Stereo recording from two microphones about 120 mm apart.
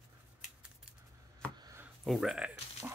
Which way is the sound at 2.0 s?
5° right (ahead or behind).